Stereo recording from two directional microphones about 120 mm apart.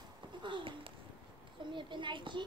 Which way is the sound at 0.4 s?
45° right (ahead or behind).